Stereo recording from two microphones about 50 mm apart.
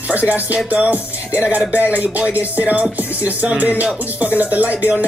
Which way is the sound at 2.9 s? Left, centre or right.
Right.